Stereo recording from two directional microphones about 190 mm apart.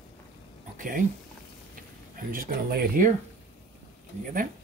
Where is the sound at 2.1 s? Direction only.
45° right (ahead or behind).